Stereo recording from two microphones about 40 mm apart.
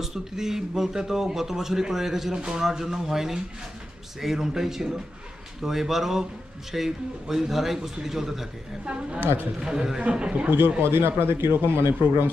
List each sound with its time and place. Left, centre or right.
0.0 s speech: centre
9.7 s a man's voice: centre
10.5 s speech: right